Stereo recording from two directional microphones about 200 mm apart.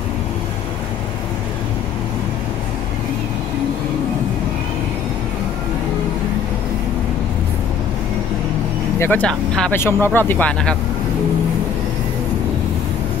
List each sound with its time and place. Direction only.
9.0 s speech: 5° left (ahead or behind)